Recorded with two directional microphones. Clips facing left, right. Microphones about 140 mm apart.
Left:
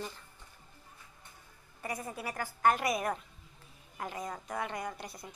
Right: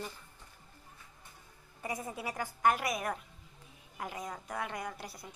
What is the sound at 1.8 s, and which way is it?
Speech, 20° right (ahead or behind).